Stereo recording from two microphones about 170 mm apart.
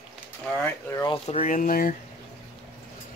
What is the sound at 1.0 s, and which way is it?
Speech, 35° left (ahead or behind).